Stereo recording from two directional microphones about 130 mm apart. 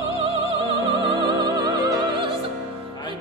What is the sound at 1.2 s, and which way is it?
Music, 40° right (ahead or behind).